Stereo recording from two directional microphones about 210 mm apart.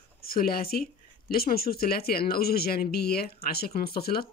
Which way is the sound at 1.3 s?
45° left (ahead or behind).